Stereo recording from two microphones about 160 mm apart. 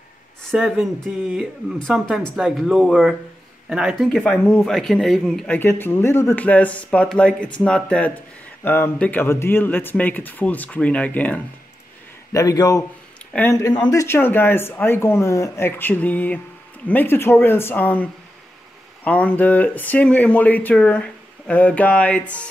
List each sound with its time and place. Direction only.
0.4 s speech: centre (ahead or behind)
4.2 s speech: 10° left (ahead or behind)
5.6 s speech: 15° left (ahead or behind)
12.3 s a man's voice: 20° left (ahead or behind)